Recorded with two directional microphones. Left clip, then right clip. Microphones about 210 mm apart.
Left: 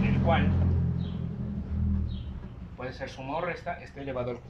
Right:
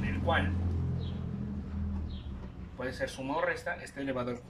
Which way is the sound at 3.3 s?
10° left (ahead or behind).